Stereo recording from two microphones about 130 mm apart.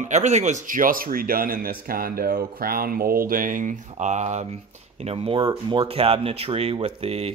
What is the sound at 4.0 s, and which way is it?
Speech, 65° right (ahead or behind).